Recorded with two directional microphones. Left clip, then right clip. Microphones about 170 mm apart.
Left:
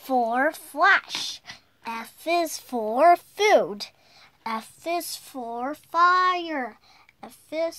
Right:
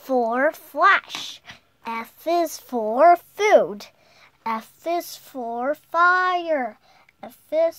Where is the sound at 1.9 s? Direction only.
35° right (ahead or behind).